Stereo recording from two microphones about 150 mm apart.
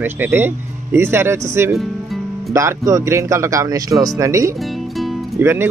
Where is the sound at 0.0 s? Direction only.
15° right (ahead or behind).